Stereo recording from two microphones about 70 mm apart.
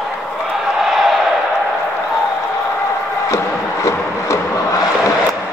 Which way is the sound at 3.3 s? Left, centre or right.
Left.